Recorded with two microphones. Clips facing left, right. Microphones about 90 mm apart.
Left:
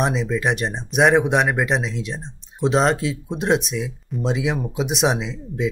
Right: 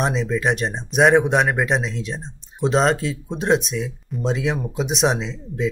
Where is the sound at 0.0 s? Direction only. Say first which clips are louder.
Even; centre (ahead or behind).